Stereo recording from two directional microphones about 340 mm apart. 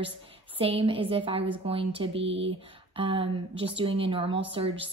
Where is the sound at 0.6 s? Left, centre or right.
Centre.